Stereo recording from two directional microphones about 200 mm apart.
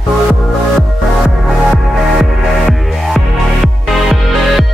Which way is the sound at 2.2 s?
Centre (ahead or behind).